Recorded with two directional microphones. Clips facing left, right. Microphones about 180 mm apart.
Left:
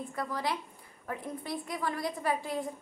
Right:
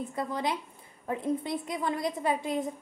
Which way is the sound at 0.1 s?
20° right (ahead or behind).